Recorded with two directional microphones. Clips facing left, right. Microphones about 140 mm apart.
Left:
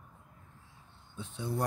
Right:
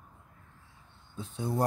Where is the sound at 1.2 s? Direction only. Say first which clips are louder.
Right 4 dB; 40° right (ahead or behind).